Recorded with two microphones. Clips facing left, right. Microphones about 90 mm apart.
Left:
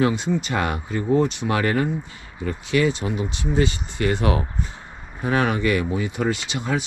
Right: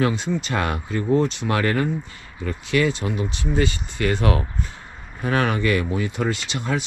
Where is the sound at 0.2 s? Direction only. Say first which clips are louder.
Left 1 dB; 20° left (ahead or behind).